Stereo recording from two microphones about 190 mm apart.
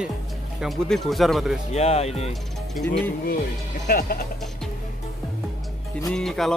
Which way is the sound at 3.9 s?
50° left (ahead or behind).